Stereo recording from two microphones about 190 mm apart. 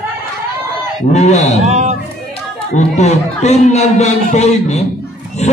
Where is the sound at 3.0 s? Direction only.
35° left (ahead or behind).